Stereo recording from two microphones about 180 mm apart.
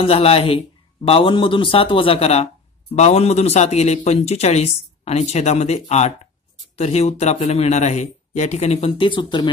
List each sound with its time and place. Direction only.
0.0 s speech: 35° left (ahead or behind)